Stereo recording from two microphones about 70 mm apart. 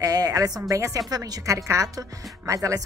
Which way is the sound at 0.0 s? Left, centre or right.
Right.